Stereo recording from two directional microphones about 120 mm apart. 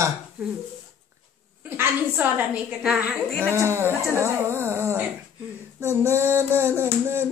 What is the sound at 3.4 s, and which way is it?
Speech, 25° right (ahead or behind).